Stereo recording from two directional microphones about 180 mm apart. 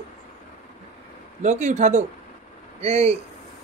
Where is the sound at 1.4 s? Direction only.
40° right (ahead or behind).